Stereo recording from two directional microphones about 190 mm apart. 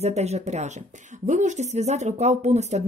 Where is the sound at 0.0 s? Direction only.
35° right (ahead or behind).